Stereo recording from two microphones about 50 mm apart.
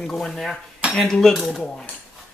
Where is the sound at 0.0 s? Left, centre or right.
Centre.